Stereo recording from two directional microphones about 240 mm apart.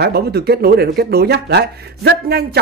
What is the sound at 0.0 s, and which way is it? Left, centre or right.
Speech, right.